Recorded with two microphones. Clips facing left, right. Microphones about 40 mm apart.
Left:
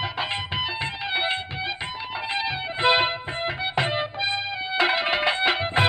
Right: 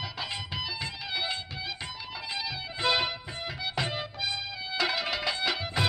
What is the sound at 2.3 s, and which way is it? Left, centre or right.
Music, left.